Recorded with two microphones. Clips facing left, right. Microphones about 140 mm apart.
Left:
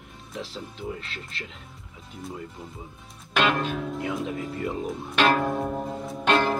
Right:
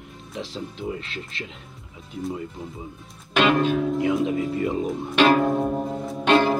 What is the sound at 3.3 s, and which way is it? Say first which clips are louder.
Speech: right 5 dB; centre (ahead or behind).